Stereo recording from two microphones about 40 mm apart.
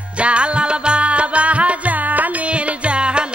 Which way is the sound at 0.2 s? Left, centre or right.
Right.